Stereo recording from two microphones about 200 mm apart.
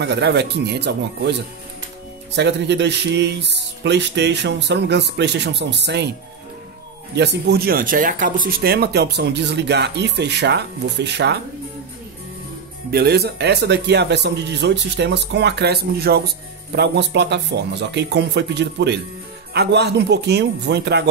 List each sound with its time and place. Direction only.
0.0 s speech: 60° right (ahead or behind)
2.3 s speech: 60° right (ahead or behind)
7.2 s speech: 55° right (ahead or behind)
12.9 s speech: 50° right (ahead or behind)